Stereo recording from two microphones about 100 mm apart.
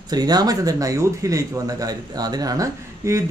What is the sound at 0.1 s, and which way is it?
Speech, 40° right (ahead or behind).